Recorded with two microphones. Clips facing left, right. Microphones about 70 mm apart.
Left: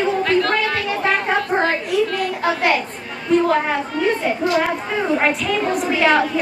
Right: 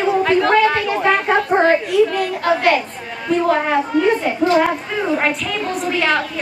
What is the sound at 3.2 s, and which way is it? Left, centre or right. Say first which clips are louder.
A woman's voice: even; centre.